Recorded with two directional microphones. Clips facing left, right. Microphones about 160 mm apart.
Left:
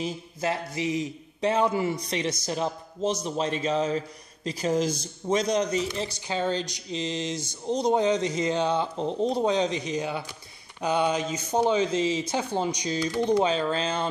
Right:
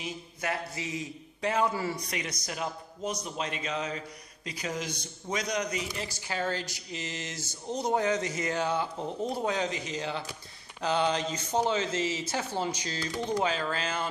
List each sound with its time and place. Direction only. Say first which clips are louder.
0.0 s a man's voice: left 6 dB; 30° left (ahead or behind)